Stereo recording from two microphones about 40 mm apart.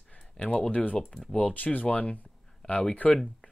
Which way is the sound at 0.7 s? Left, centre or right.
Left.